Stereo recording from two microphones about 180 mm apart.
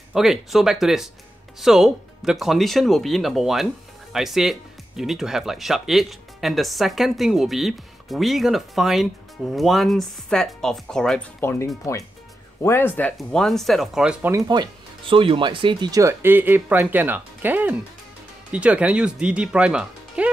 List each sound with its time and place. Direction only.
0.1 s speech: centre (ahead or behind)
11.4 s speech: 15° left (ahead or behind); by 14.3 s 5° right (ahead or behind)
14.3 s speech: 25° right (ahead or behind); by 20.2 s 5° right (ahead or behind)